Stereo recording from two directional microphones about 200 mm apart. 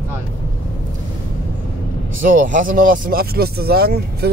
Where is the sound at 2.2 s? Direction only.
40° right (ahead or behind).